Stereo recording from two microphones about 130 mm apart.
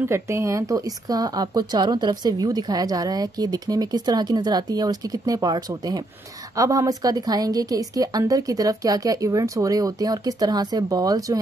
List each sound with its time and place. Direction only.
0.0 s a woman's voice: 20° right (ahead or behind)